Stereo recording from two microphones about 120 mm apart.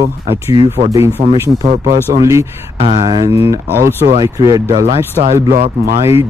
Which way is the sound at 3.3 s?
25° right (ahead or behind).